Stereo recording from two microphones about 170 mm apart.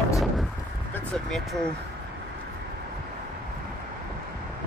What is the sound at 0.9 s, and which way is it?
Vehicle, 5° left (ahead or behind).